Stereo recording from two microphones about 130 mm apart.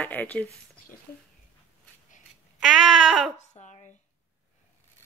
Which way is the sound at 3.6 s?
65° left (ahead or behind).